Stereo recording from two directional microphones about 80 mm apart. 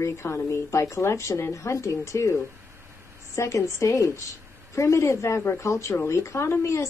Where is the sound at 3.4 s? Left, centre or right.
Left.